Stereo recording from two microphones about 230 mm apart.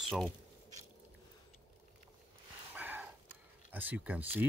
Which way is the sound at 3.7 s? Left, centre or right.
Centre.